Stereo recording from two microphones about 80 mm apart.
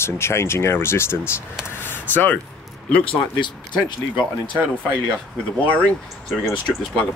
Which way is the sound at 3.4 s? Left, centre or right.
Left.